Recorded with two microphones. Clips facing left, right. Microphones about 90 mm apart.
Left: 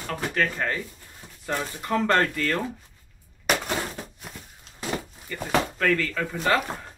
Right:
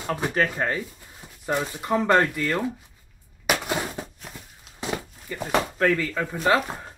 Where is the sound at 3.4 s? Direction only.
5° right (ahead or behind).